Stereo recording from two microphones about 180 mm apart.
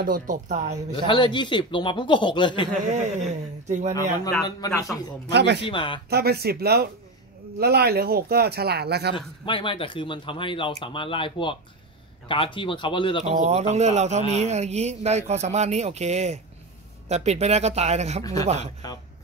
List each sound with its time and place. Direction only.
0.0 s speech: 50° right (ahead or behind)
0.9 s speech: 25° left (ahead or behind)
2.9 s speech: 40° right (ahead or behind)
4.4 s speech: 20° left (ahead or behind)
5.3 s speech: 70° right (ahead or behind)
5.7 s speech: 30° left (ahead or behind)
6.0 s speech: 65° right (ahead or behind)
9.1 s speech: 30° left (ahead or behind)
13.2 s speech: 35° right (ahead or behind)
18.2 s speech: 20° left (ahead or behind)